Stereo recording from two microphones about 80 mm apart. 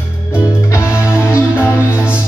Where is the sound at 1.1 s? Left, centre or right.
Left.